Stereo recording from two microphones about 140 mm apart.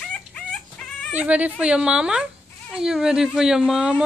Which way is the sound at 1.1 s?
10° right (ahead or behind).